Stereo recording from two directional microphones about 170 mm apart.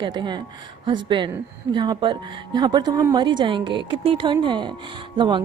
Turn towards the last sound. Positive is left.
turn(degrees=-25)  # may be behind; listen again after turning